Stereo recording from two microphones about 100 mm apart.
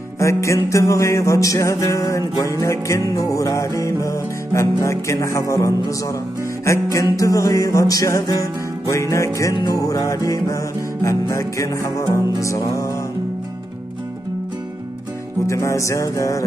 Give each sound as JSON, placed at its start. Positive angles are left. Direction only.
{"t": 0.2, "sound": "music", "side_deg": 30}
{"t": 15.4, "sound": "music", "side_deg": 30}